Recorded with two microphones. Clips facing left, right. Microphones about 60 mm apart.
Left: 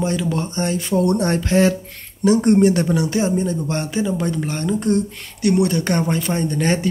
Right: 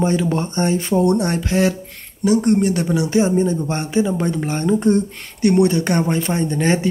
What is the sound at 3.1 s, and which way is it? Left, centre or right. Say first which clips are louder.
Speech: right 3 dB; right.